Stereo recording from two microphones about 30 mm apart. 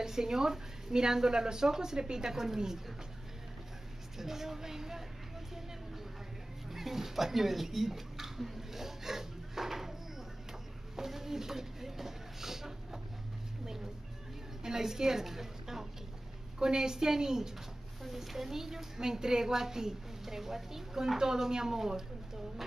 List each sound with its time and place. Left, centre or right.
0.0 s speech: centre
4.2 s a woman's voice: centre
6.7 s speech: centre
11.1 s a sound: centre
14.6 s a sound: centre
16.5 s speech: right
18.0 s a woman's voice: centre